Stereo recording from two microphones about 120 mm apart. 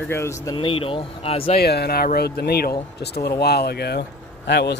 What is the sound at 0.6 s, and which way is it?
Speech, 50° left (ahead or behind).